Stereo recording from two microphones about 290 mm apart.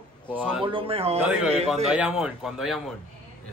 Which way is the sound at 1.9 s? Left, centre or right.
Centre.